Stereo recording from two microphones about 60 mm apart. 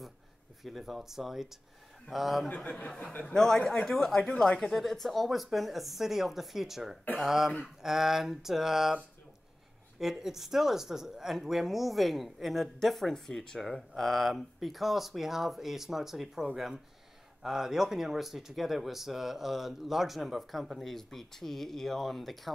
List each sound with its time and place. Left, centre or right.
0.7 s speech: centre
2.7 s a man's voice: centre
3.3 s speech: centre
9.9 s speech: centre